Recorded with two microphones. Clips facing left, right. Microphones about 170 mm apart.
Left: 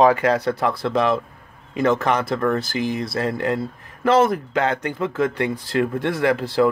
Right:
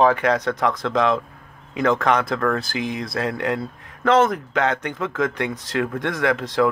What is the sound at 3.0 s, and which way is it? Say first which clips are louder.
Speech: left 1 dB; centre (ahead or behind).